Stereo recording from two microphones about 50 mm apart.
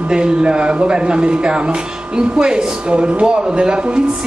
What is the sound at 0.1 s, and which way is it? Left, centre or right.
Speech, centre.